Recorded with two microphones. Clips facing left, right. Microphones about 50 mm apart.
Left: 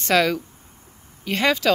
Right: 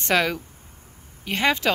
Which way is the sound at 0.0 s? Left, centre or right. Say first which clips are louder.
Left 3 dB; right.